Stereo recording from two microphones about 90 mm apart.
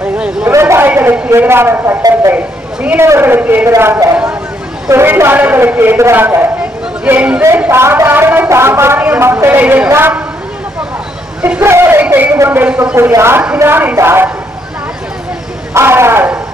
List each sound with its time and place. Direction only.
0.5 s a sound: 30° right (ahead or behind)
1.3 s a man's voice: 25° right (ahead or behind)
3.0 s a man's voice: 30° right (ahead or behind)
11.6 s a man's voice: 30° right (ahead or behind)
15.7 s a man's voice: 30° right (ahead or behind)